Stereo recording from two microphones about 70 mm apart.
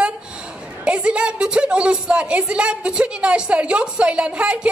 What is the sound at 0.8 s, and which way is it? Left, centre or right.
A woman's voice, centre.